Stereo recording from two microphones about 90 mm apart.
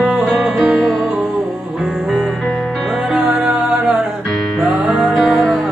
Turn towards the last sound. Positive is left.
turn(degrees=0)  # may be behind; listen again after turning